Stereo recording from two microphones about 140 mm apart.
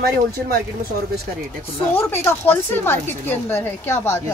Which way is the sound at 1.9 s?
15° left (ahead or behind).